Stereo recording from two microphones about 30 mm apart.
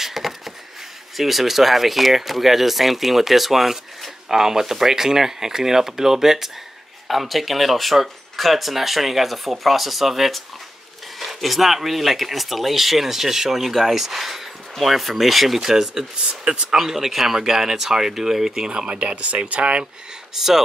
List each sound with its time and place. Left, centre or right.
0.0 s a sound: centre
1.1 s speech: centre
15.6 s speech: centre
16.3 s speech: right
16.7 s speech: centre
18.7 s speech: right
20.3 s speech: centre